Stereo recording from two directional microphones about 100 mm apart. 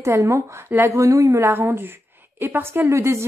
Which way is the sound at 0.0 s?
30° right (ahead or behind).